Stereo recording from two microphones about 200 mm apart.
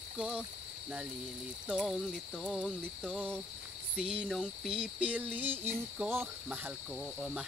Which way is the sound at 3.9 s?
5° right (ahead or behind).